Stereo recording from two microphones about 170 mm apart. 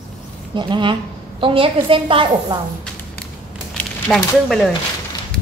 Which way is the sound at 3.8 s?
5° left (ahead or behind).